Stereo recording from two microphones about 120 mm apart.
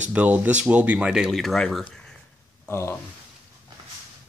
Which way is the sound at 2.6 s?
15° left (ahead or behind).